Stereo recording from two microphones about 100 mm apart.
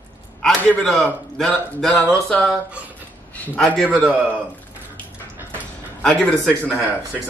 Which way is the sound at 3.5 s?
5° left (ahead or behind).